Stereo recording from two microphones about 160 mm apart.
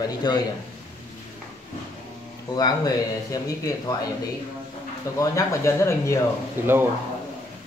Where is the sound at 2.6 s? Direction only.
25° left (ahead or behind).